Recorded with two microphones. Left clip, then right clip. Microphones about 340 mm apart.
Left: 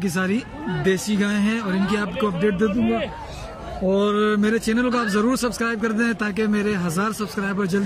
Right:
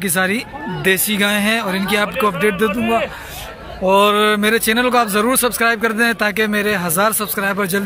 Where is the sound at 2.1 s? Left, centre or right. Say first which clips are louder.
Right 6 dB; right.